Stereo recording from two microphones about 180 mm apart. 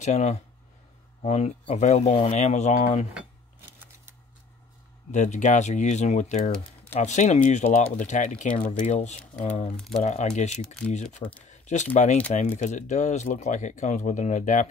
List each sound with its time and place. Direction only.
0.0 s speech: 40° left (ahead or behind)
3.2 s a sound: 10° right (ahead or behind)
5.1 s speech: 40° left (ahead or behind)
9.8 s speech: centre (ahead or behind)
10.0 s speech: 40° left (ahead or behind)